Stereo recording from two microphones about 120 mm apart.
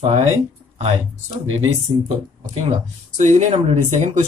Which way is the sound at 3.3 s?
65° right (ahead or behind).